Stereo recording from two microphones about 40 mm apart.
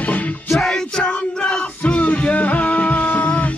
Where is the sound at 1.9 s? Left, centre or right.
Left.